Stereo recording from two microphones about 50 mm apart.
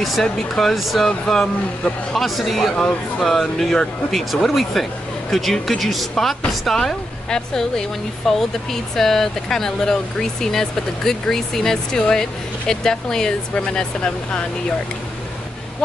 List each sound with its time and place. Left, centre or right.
0.2 s speech: centre
1.2 s speech: centre
2.1 s speech: centre
2.7 s speech: left
3.3 s speech: centre